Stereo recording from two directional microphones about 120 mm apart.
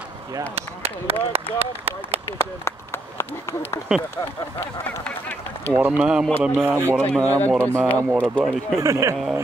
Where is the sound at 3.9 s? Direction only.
5° right (ahead or behind).